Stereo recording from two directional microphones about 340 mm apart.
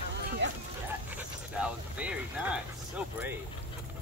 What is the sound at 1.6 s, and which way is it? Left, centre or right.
Speech, centre.